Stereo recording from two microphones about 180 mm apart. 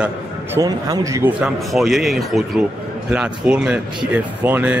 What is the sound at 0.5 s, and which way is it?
Speech, 20° right (ahead or behind).